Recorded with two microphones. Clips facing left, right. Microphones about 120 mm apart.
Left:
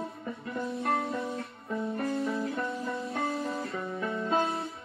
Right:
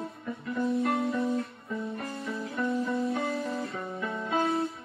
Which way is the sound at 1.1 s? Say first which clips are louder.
Right 5 dB; centre (ahead or behind).